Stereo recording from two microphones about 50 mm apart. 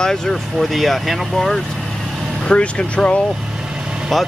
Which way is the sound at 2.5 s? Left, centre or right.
Left.